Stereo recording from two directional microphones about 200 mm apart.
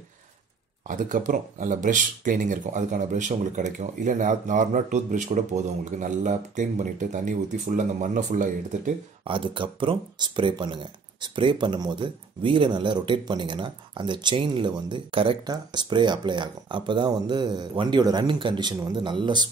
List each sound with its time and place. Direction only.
0.8 s speech: 40° right (ahead or behind)
9.2 s speech: 25° right (ahead or behind)